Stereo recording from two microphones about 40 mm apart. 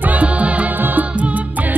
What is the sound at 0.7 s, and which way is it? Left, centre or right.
Music, right.